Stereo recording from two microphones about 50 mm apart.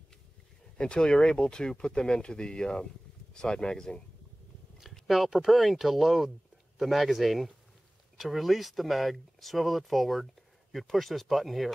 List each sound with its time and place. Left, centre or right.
0.7 s speech: centre
4.9 s speech: centre